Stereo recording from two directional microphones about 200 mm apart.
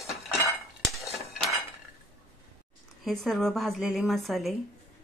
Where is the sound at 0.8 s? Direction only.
Centre (ahead or behind).